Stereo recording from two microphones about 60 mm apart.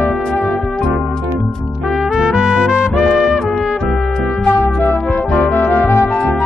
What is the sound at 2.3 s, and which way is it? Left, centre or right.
Music, centre.